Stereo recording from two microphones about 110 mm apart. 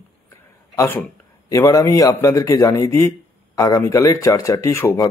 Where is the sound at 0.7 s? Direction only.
25° left (ahead or behind).